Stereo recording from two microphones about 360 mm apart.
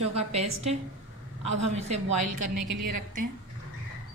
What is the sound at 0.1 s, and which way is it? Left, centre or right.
Speech, centre.